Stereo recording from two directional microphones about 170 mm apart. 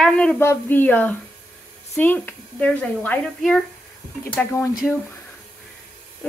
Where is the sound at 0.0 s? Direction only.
5° left (ahead or behind).